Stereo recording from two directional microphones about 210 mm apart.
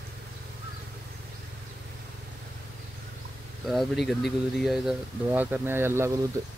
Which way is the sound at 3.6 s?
Centre (ahead or behind).